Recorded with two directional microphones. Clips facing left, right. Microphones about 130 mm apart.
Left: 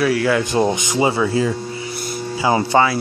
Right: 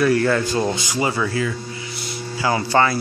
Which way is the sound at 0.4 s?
20° left (ahead or behind).